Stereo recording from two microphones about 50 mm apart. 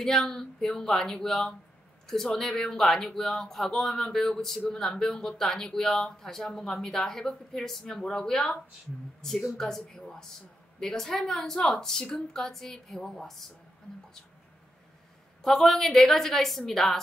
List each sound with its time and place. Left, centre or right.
0.0 s a woman's voice: centre
15.4 s a woman's voice: centre